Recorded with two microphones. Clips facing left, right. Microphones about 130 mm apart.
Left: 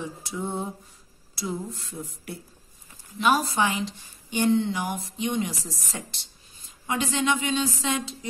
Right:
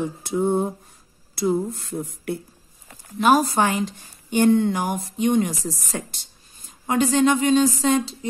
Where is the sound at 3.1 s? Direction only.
45° right (ahead or behind).